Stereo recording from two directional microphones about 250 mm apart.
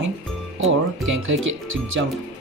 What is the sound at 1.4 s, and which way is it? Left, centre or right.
Speech, right.